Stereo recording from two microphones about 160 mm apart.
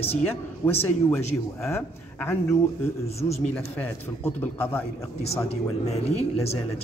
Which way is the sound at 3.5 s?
10° left (ahead or behind).